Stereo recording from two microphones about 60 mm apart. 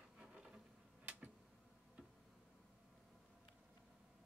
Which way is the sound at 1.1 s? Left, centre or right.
Right.